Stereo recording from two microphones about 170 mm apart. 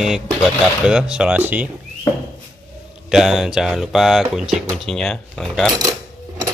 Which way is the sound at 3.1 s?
Centre (ahead or behind).